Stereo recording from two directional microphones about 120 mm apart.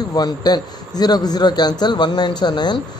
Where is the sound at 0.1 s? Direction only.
35° left (ahead or behind).